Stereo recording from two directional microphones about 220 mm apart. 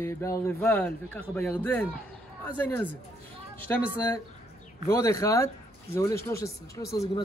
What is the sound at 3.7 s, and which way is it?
Speech, 10° left (ahead or behind).